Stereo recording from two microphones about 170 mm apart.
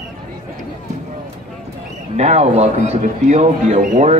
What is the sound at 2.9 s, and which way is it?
Speech, 40° right (ahead or behind).